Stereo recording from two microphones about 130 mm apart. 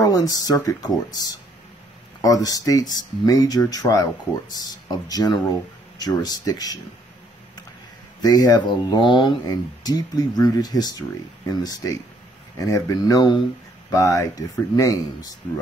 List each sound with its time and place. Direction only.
0.0 s speech: 30° left (ahead or behind)
8.2 s speech: 30° left (ahead or behind)